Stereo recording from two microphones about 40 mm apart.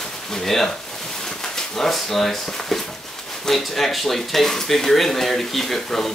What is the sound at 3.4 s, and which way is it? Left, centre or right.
Speech, centre.